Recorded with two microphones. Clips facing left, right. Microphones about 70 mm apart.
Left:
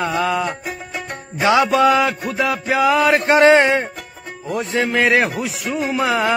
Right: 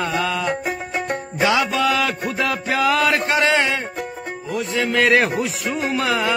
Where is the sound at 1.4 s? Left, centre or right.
Left.